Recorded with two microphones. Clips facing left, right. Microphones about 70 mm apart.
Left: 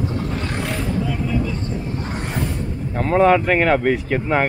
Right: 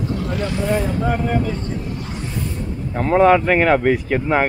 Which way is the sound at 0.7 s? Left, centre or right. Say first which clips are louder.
Right 3 dB; right.